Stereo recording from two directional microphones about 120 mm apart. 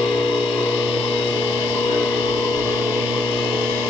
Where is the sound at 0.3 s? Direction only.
5° right (ahead or behind).